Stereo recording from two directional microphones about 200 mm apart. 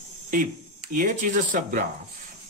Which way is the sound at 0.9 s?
45° right (ahead or behind).